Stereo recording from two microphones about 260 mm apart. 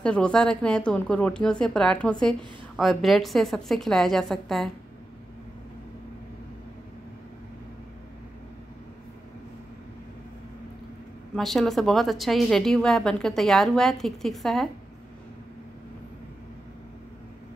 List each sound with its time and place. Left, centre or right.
0.0 s a woman's voice: centre
11.3 s a woman's voice: centre